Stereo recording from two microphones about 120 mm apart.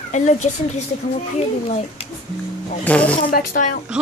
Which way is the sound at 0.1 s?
75° left (ahead or behind).